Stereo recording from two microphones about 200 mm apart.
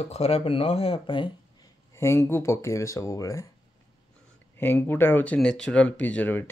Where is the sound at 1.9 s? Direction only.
15° left (ahead or behind).